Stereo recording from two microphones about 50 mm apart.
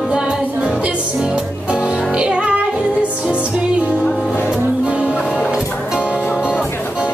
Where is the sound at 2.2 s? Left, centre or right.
Right.